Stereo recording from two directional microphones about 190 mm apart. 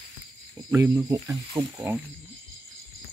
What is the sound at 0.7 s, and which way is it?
Speech, 15° right (ahead or behind).